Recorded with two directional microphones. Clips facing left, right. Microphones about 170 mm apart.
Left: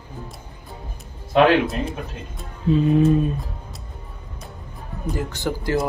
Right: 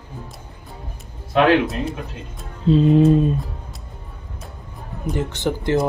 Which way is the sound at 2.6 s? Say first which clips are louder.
Right 3 dB; 30° right (ahead or behind).